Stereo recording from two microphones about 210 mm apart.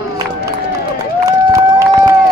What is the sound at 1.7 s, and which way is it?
Run, 15° right (ahead or behind).